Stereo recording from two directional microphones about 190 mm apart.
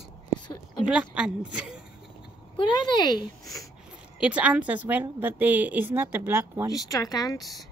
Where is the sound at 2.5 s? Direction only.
25° left (ahead or behind).